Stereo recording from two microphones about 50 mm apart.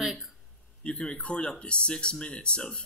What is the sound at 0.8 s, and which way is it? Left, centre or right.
Speech, centre.